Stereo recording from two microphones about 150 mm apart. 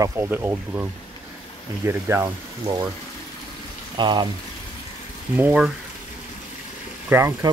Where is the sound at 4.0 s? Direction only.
30° right (ahead or behind).